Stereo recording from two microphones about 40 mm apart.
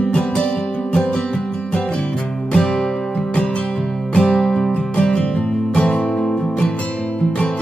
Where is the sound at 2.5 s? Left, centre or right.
Centre.